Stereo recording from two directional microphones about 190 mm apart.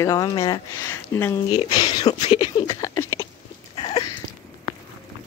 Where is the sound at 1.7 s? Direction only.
20° left (ahead or behind).